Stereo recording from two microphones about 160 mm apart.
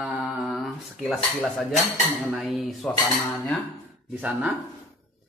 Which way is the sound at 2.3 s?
Centre (ahead or behind).